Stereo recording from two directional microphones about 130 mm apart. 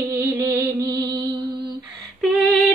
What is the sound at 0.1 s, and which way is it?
Music, 25° right (ahead or behind).